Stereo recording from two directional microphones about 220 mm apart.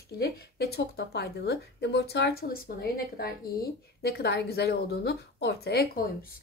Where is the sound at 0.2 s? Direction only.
45° left (ahead or behind).